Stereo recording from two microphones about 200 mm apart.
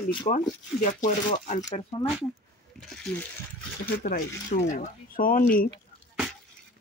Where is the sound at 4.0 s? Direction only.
45° left (ahead or behind).